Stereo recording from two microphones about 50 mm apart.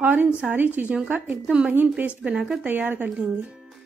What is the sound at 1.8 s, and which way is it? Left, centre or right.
Speech, right.